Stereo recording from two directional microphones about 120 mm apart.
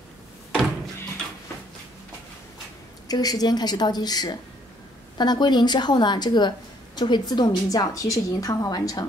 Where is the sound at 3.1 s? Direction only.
30° left (ahead or behind).